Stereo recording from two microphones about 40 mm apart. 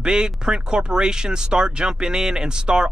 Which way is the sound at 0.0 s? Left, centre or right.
Right.